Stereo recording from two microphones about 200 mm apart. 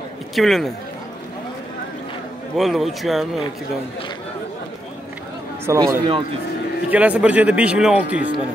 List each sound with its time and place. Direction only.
0.4 s a man's voice: centre (ahead or behind)
2.5 s a man's voice: centre (ahead or behind)
5.7 s speech: 20° right (ahead or behind)
6.9 s speech: 5° right (ahead or behind)